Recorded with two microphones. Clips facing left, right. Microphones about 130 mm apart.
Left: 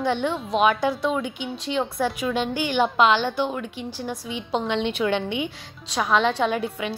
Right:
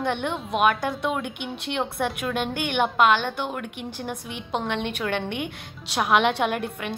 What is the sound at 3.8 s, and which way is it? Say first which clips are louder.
Speech: left 2 dB; 55° right (ahead or behind).